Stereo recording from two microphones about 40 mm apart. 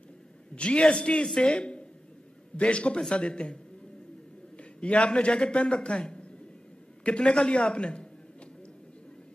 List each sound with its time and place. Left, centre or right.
0.6 s speech: left
4.6 s a man's voice: left